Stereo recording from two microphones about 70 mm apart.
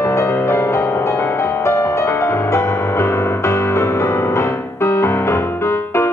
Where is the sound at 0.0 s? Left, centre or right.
Left.